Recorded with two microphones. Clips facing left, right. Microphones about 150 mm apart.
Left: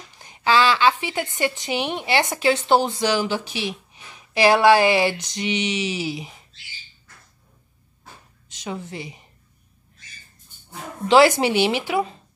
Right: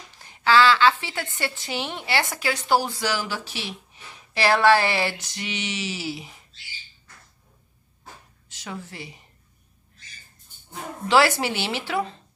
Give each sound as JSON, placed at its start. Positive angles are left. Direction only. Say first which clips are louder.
{"t": 0.2, "sound": "a woman's voice", "louder": "even", "side_deg": 15}
{"t": 8.5, "sound": "a woman's voice", "louder": "left 5 dB", "side_deg": 20}
{"t": 11.1, "sound": "a woman's voice", "louder": "left 5 dB", "side_deg": 20}